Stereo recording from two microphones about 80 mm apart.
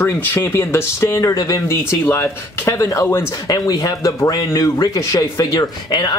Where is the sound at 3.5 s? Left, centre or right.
Left.